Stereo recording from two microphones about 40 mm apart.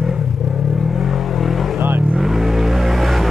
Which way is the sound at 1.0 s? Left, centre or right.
Centre.